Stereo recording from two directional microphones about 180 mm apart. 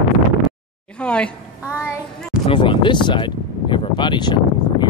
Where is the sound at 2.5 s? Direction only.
25° left (ahead or behind).